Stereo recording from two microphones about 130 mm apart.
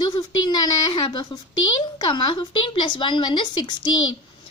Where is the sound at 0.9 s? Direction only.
35° left (ahead or behind).